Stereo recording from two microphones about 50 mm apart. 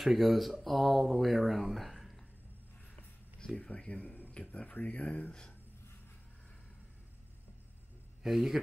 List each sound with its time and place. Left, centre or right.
0.0 s speech: centre
3.3 s speech: left
8.2 s a man's voice: centre